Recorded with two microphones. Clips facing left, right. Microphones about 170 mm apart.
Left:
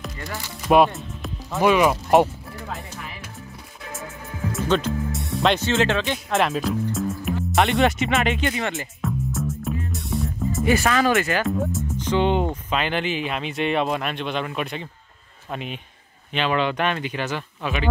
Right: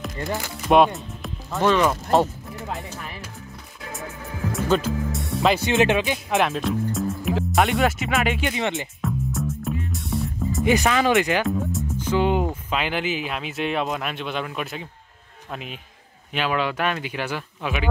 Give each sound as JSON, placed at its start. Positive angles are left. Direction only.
{"t": 0.7, "sound": "music", "side_deg": 0}
{"t": 1.7, "sound": "speech", "side_deg": 10}
{"t": 4.5, "sound": "speech", "side_deg": 0}
{"t": 5.7, "sound": "speech", "side_deg": -15}
{"t": 6.3, "sound": "speech", "side_deg": 0}
{"t": 8.4, "sound": "speech", "side_deg": -15}
{"t": 9.0, "sound": "music", "side_deg": 0}
{"t": 10.6, "sound": "speech", "side_deg": -15}
{"t": 11.4, "sound": "speech", "side_deg": 0}